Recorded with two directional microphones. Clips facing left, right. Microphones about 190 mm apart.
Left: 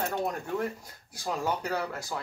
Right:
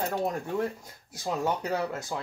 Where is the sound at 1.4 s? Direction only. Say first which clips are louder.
Right 2 dB; 25° right (ahead or behind).